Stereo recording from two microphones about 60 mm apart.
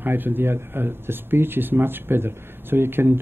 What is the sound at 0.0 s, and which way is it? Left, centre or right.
Speech, right.